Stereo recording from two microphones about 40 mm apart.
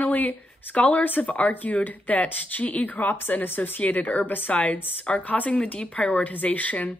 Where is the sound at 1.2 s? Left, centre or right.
Left.